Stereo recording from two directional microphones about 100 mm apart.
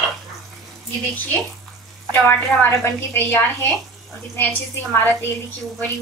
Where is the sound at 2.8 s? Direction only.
20° left (ahead or behind).